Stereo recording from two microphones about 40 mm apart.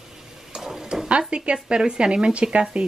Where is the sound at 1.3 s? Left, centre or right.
Right.